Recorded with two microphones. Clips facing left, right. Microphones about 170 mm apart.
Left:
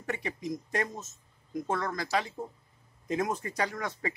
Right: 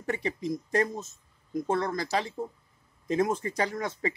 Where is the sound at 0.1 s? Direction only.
30° right (ahead or behind).